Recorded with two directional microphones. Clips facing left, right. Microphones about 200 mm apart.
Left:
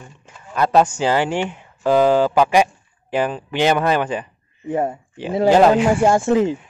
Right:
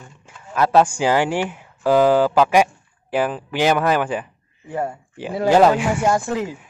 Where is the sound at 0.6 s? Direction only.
5° right (ahead or behind).